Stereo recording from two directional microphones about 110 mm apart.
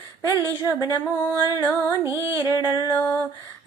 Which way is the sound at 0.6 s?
35° left (ahead or behind).